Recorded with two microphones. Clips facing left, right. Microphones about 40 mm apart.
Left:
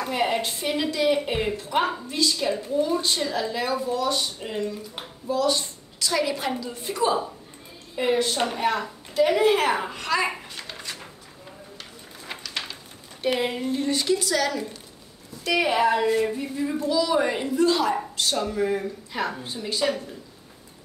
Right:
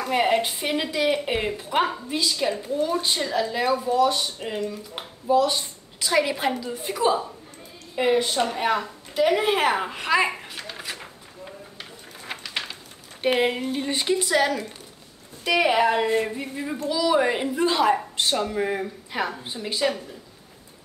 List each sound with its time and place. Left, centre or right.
0.1 s a woman's voice: centre
12.3 s a sound: centre
13.2 s speech: right
15.4 s a woman's voice: centre